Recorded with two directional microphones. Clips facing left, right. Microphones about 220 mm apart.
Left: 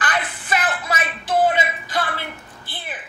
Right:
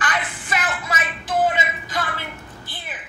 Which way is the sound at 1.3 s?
30° left (ahead or behind).